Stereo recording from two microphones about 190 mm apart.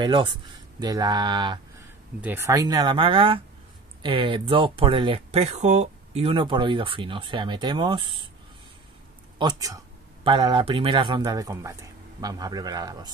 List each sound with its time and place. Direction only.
0.0 s speech: 25° right (ahead or behind)
9.4 s speech: 20° right (ahead or behind)